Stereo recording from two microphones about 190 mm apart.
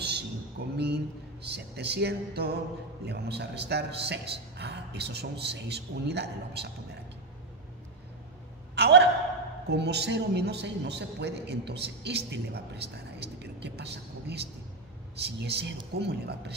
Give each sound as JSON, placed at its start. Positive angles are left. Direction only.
{"t": 0.0, "sound": "a sound", "side_deg": -60}
{"t": 3.1, "sound": "a man's voice", "side_deg": -60}
{"t": 8.7, "sound": "a man's voice", "side_deg": -60}